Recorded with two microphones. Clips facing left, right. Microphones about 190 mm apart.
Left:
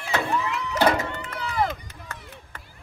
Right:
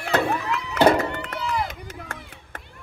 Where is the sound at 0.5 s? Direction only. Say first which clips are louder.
Right 5 dB; 60° right (ahead or behind).